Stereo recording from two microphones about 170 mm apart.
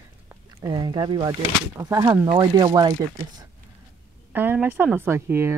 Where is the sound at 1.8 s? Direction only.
15° right (ahead or behind).